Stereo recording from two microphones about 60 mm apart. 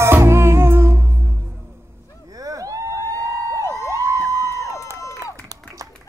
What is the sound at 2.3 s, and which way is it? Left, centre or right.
Vehicle, right.